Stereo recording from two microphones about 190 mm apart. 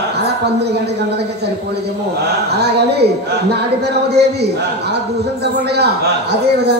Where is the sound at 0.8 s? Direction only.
60° right (ahead or behind).